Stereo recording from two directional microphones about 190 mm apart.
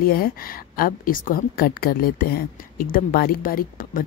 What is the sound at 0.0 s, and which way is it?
A woman's voice, 50° left (ahead or behind).